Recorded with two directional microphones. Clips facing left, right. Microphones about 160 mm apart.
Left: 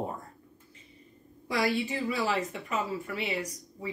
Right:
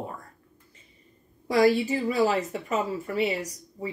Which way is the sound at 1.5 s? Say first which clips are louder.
Right 8 dB; 40° right (ahead or behind).